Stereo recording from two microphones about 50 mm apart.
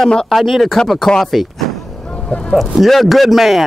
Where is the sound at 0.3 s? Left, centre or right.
Centre.